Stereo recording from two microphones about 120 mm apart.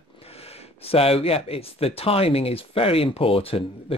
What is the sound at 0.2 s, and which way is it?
Speech, 55° left (ahead or behind).